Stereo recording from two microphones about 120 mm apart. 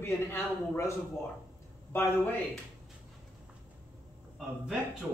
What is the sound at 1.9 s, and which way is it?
Speech, 15° left (ahead or behind).